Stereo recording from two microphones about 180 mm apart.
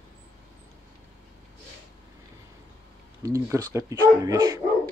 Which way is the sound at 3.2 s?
15° right (ahead or behind).